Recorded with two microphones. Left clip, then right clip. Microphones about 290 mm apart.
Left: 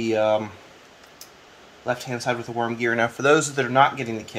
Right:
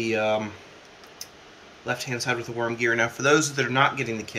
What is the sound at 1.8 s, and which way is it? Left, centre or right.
Speech, left.